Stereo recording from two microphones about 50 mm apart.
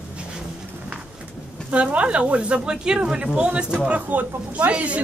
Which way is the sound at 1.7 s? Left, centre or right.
Right.